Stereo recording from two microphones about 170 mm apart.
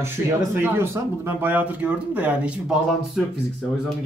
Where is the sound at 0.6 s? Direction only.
15° right (ahead or behind).